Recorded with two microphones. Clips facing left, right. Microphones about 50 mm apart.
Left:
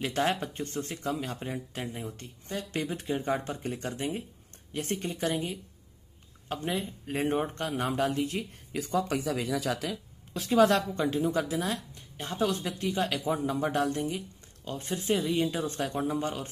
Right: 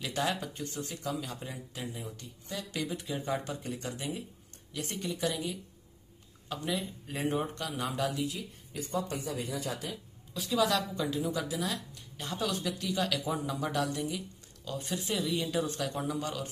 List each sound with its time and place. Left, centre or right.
0.0 s speech: left
8.7 s speech: left
10.3 s speech: left